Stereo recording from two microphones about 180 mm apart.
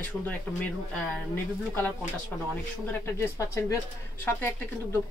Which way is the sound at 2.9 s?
15° left (ahead or behind).